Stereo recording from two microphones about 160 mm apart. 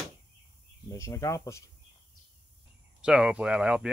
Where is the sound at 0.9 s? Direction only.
20° left (ahead or behind).